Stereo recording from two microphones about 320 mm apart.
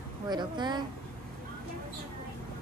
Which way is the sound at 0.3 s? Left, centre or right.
Centre.